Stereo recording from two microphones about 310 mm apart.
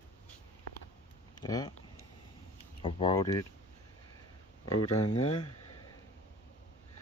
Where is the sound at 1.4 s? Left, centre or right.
Centre.